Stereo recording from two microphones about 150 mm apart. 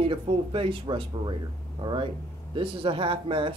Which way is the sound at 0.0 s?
35° right (ahead or behind).